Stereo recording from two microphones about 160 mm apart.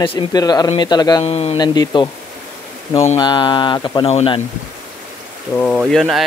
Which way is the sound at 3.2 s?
30° left (ahead or behind).